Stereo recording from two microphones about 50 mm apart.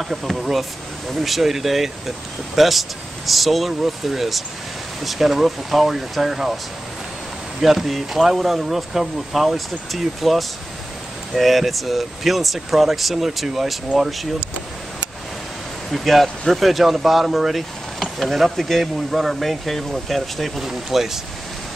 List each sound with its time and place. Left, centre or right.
0.0 s speech: centre
7.6 s speech: centre
15.9 s speech: centre